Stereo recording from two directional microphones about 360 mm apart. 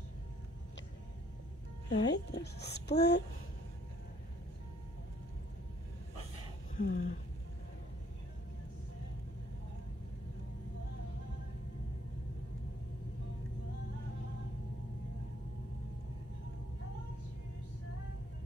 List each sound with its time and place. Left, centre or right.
1.9 s a child's voice: left
6.8 s a child's voice: left